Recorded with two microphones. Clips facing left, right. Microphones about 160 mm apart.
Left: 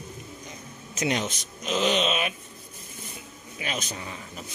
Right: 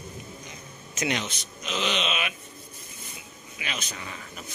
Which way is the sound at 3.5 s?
40° left (ahead or behind).